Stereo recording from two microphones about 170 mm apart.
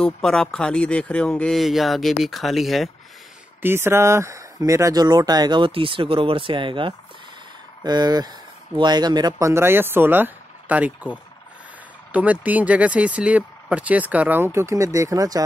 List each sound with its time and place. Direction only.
0.0 s speech: 5° left (ahead or behind)
3.6 s speech: 15° right (ahead or behind)